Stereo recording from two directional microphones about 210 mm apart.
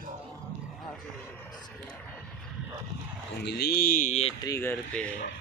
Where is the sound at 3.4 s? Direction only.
50° left (ahead or behind); by 4.3 s 35° left (ahead or behind).